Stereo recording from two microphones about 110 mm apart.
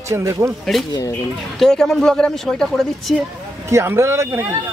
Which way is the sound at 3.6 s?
25° right (ahead or behind).